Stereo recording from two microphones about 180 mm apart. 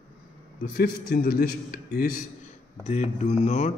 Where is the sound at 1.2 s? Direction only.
60° left (ahead or behind).